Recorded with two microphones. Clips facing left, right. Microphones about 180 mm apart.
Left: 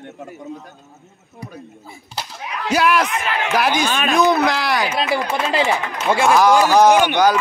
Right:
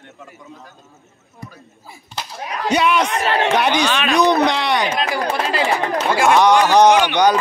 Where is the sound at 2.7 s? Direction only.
5° left (ahead or behind).